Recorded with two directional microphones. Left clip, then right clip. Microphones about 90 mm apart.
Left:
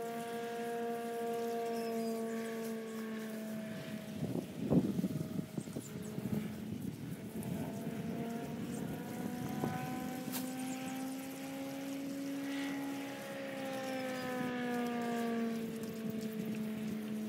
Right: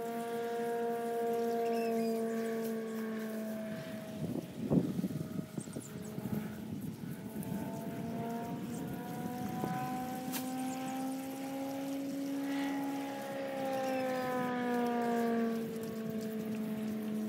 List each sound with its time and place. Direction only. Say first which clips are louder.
0.6 s a sound: right 4 dB; 30° left (ahead or behind)
4.7 s boat: even; 25° left (ahead or behind)
12.4 s pump: right 4 dB; 35° left (ahead or behind)
13.7 s siren: right 6 dB; 30° left (ahead or behind)